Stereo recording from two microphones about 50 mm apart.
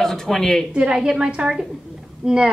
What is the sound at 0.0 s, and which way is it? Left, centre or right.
Speech, centre.